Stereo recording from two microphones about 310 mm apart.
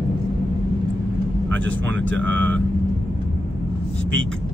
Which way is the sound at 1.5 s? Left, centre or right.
Right.